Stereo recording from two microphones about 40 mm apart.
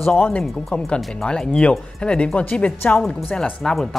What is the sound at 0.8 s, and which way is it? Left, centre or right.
Speech, left.